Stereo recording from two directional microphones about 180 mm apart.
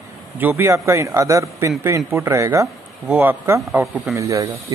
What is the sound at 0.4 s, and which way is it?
Speech, 10° right (ahead or behind).